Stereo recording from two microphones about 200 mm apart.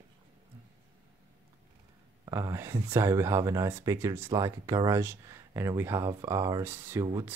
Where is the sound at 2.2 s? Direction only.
15° right (ahead or behind).